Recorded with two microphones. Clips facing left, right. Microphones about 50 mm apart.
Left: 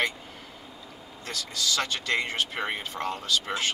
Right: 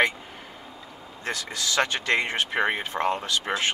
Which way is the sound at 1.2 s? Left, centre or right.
Right.